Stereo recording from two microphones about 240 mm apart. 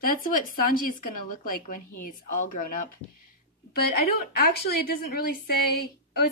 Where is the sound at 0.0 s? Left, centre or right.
Left.